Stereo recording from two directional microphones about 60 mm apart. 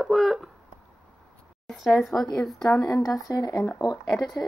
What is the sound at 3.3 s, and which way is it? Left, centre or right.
Speech, left.